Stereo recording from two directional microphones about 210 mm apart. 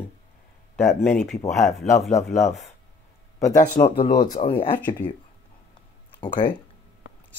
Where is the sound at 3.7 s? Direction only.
35° left (ahead or behind).